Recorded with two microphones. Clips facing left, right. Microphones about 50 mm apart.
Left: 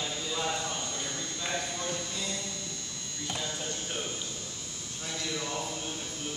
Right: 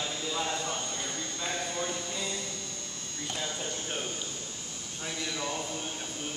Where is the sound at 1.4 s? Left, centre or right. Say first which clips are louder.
Right 1 dB; centre.